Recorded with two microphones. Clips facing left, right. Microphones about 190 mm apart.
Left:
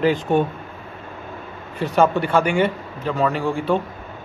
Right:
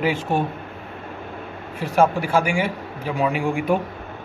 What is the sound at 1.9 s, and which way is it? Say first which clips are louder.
Speech: left 1 dB; 10° right (ahead or behind).